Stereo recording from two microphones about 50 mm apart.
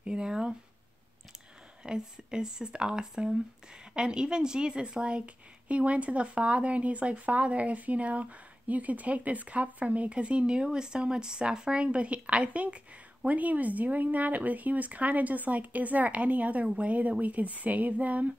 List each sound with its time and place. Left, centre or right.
0.0 s speech: centre
1.8 s a woman's voice: centre